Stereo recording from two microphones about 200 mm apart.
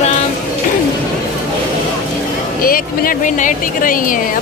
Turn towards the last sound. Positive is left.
turn(degrees=45)  # may be behind; listen again after turning